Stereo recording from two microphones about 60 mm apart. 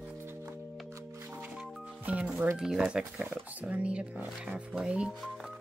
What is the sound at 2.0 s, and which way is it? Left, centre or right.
Speech, right.